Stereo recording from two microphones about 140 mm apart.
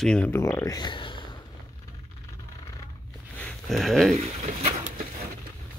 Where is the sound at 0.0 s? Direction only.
10° left (ahead or behind); by 1.2 s 35° left (ahead or behind).